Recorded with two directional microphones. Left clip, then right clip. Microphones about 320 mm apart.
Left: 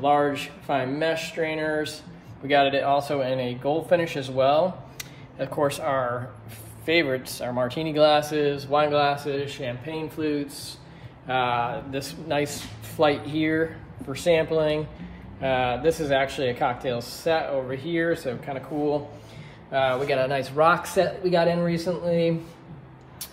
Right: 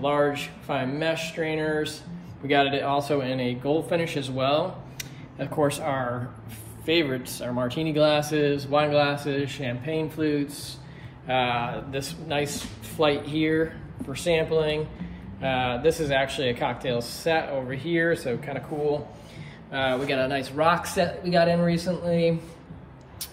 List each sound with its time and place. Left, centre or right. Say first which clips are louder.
0.0 s a man's voice: left 2 dB; centre
19.7 s a man's voice: left 3 dB; centre